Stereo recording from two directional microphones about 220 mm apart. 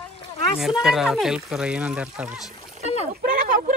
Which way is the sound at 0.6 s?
Centre (ahead or behind).